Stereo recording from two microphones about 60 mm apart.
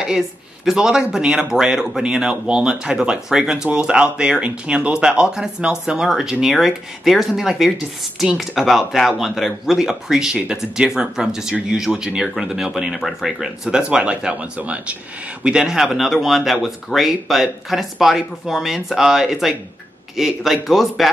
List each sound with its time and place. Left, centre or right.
0.7 s speech: centre
13.7 s speech: centre